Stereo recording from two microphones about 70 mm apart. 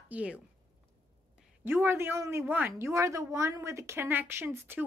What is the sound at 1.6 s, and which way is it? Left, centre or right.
Speech, right.